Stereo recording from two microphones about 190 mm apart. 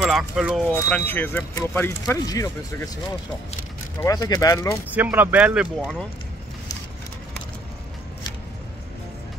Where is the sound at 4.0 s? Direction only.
20° left (ahead or behind).